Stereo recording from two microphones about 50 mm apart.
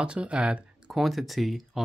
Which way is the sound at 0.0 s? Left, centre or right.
Right.